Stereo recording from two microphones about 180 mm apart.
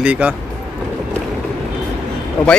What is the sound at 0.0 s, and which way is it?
Speech, 10° right (ahead or behind).